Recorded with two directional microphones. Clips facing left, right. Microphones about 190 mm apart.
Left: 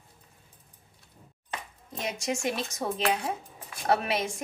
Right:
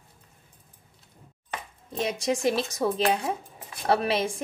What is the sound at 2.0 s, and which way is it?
Speech, 30° right (ahead or behind).